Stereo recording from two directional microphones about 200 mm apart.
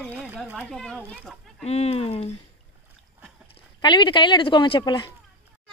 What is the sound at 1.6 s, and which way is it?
Speech, 30° left (ahead or behind).